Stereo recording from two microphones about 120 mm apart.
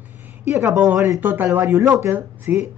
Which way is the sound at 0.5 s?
25° right (ahead or behind).